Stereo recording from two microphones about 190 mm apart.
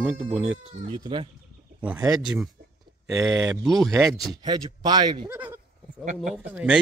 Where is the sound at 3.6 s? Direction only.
Centre (ahead or behind).